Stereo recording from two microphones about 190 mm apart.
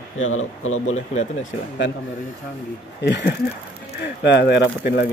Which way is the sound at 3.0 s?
60° left (ahead or behind).